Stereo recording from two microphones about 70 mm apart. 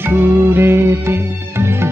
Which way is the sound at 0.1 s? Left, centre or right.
Right.